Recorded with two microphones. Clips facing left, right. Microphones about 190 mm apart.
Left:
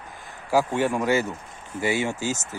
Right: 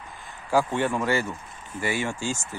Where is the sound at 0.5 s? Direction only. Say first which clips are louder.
Left 1 dB; 10° left (ahead or behind).